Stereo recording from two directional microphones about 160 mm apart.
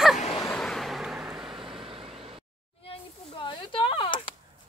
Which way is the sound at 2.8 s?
35° left (ahead or behind).